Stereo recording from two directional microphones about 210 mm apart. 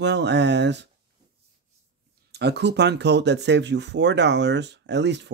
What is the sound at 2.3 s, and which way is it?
Speech, 55° right (ahead or behind).